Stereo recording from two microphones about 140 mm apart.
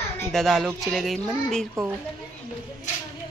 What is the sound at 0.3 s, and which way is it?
Speech, centre (ahead or behind).